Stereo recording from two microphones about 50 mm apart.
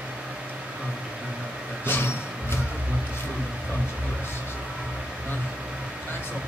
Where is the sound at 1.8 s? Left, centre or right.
Left.